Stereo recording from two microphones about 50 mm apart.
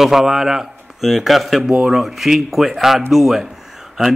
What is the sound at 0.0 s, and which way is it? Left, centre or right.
A man's voice, centre.